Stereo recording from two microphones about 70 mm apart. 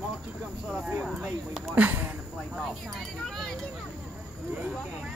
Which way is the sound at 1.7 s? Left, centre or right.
Right.